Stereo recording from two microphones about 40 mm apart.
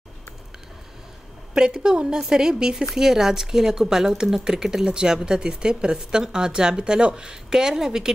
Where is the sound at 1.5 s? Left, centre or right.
Centre.